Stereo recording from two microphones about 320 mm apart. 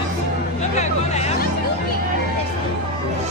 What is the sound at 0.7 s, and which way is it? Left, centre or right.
Hubbub, left.